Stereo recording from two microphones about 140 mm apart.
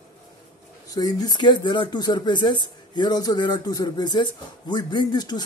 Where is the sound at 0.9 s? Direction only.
30° left (ahead or behind).